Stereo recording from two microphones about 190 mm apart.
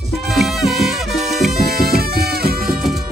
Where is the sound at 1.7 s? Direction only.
55° right (ahead or behind).